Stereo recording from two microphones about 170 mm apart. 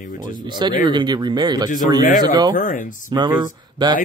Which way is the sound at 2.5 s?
50° left (ahead or behind).